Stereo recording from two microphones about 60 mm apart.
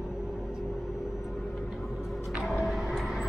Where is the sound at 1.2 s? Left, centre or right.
Centre.